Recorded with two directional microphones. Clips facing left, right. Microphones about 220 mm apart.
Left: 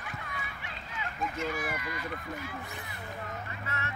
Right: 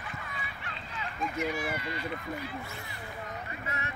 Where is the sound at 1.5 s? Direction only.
25° right (ahead or behind).